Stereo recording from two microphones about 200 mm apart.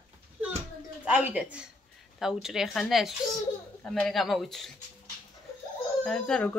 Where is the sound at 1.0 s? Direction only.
5° right (ahead or behind).